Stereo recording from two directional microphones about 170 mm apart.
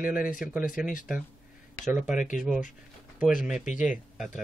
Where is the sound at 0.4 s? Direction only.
5° right (ahead or behind).